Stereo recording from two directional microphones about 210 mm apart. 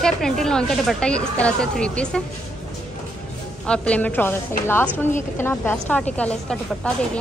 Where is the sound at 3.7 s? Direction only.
5° left (ahead or behind).